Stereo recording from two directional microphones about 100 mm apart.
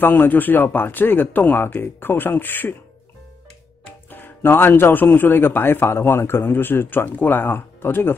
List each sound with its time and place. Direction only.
0.0 s a man's voice: 20° left (ahead or behind)
4.1 s a man's voice: 20° left (ahead or behind)